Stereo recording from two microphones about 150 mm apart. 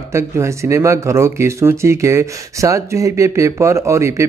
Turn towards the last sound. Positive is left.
turn(degrees=-20)  # may be behind; listen again after turning